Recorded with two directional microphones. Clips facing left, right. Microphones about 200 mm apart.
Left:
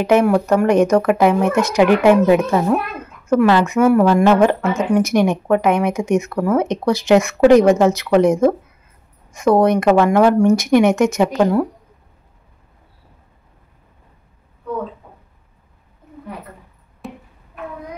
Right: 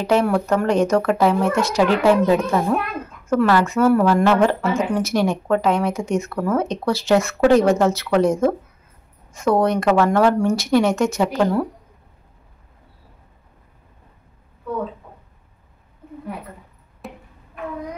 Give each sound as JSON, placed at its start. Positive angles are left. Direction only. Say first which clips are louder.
{"t": 0.0, "sound": "speech", "louder": "left 4 dB", "side_deg": 20}
{"t": 17.0, "sound": "music", "louder": "left 3 dB", "side_deg": 0}